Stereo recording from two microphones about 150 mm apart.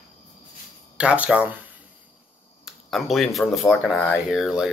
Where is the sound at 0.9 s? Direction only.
10° right (ahead or behind).